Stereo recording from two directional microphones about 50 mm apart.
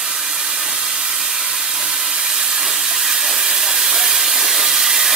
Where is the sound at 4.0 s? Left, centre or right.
Centre.